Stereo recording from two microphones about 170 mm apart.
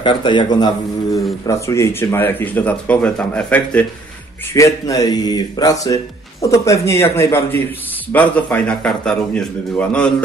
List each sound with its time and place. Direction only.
0.0 s speech: 25° left (ahead or behind); by 10.1 s 5° left (ahead or behind)